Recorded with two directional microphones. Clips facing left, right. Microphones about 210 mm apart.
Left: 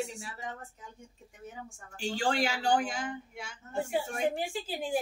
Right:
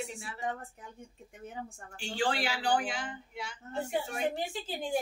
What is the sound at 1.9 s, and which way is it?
A woman's voice, 40° left (ahead or behind).